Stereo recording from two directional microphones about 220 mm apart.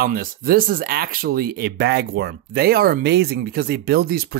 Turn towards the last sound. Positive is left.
turn(degrees=-45)  # may be behind; listen again after turning